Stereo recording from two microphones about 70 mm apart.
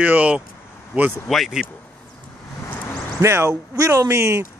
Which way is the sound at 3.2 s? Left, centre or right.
Right.